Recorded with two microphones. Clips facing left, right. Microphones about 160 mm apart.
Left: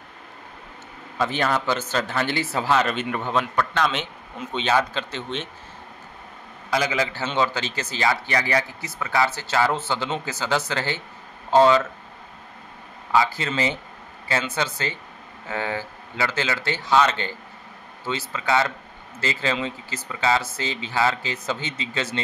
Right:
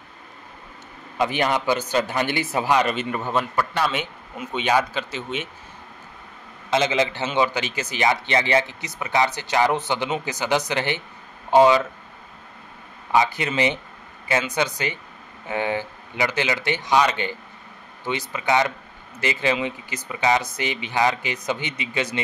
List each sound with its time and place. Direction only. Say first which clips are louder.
1.1 s speech: right 1 dB; 15° right (ahead or behind)
6.7 s speech: right 3 dB; 25° right (ahead or behind)
13.1 s speech: right 1 dB; 20° right (ahead or behind)